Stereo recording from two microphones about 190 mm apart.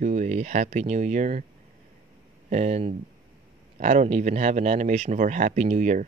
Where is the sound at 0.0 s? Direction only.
40° right (ahead or behind).